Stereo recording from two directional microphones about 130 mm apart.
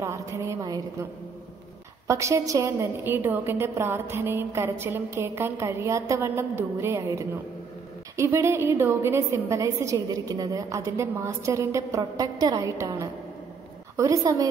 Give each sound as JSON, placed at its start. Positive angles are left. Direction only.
{"t": 0.0, "sound": "a woman's voice", "side_deg": -25}
{"t": 2.0, "sound": "a woman's voice", "side_deg": -25}